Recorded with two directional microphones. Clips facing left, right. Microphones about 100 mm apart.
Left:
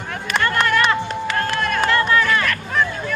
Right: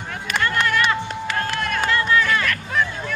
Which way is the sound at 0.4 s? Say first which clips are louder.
Left 2 dB; 55° left (ahead or behind).